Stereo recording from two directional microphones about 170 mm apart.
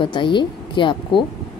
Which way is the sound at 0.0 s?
30° left (ahead or behind).